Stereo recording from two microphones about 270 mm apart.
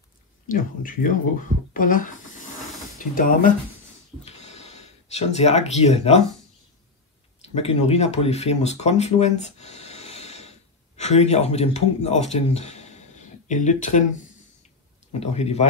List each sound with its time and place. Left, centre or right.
0.5 s speech: left
7.5 s speech: left
15.1 s speech: left